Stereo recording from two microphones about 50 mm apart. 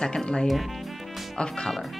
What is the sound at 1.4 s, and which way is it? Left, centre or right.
Speech, centre.